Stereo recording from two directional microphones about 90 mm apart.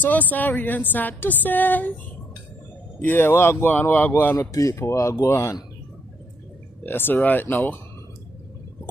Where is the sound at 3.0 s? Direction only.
25° left (ahead or behind).